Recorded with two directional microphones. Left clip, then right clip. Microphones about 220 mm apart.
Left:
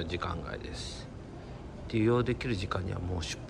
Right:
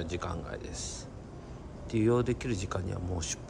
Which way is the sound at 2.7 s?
15° right (ahead or behind).